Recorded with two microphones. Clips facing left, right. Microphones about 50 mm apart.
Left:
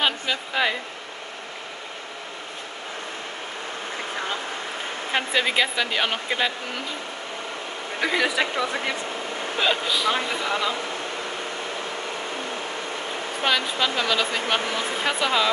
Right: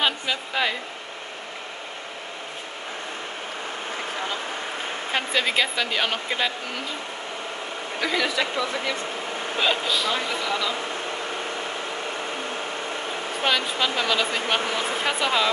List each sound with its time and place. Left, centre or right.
0.0 s speech: centre
5.1 s speech: centre
8.0 s speech: centre
9.6 s speech: centre
10.1 s speech: centre
13.4 s speech: centre